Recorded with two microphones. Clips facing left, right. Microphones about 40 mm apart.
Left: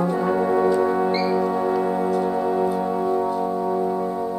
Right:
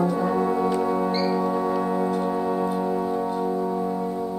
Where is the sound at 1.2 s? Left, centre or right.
Centre.